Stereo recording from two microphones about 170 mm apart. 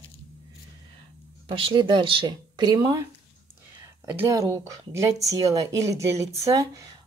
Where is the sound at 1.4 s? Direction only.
30° right (ahead or behind).